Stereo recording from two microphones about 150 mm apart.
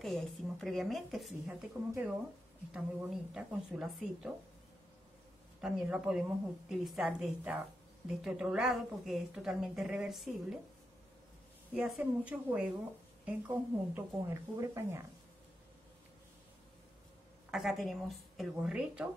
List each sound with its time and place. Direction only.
0.0 s a woman's voice: 5° left (ahead or behind)
2.7 s a woman's voice: 5° right (ahead or behind)
5.6 s a woman's voice: 5° right (ahead or behind)
11.7 s a woman's voice: 10° right (ahead or behind)
17.5 s a woman's voice: centre (ahead or behind)